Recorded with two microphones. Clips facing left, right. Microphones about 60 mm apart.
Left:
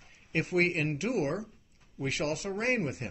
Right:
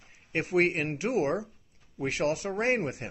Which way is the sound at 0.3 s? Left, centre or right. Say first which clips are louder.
Right 2 dB; right.